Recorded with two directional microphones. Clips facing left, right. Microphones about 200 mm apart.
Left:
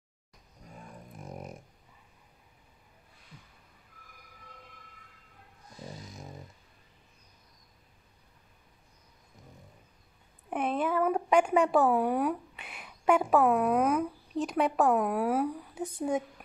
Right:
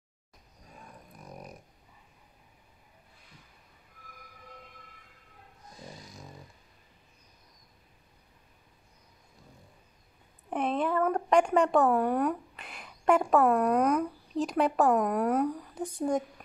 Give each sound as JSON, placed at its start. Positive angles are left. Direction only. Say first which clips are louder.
{"t": 1.1, "sound": "dog", "louder": "left 4 dB", "side_deg": 25}
{"t": 10.5, "sound": "speech", "louder": "right 1 dB", "side_deg": 5}